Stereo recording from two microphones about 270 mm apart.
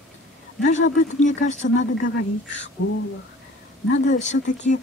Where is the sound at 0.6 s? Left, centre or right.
Left.